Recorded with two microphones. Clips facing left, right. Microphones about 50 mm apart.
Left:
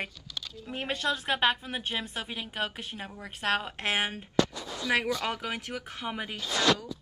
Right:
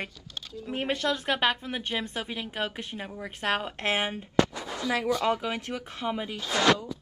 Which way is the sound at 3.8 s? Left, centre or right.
Left.